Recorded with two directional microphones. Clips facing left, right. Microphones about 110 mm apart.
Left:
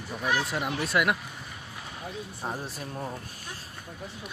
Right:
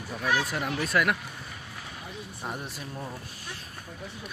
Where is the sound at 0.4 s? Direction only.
20° left (ahead or behind).